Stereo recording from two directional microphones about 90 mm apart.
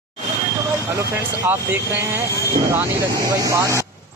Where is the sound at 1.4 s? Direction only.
25° right (ahead or behind).